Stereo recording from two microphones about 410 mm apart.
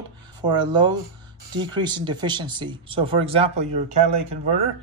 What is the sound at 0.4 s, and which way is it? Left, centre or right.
Speech, centre.